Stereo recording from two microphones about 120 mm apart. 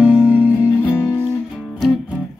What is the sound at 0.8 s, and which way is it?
Music, 15° left (ahead or behind).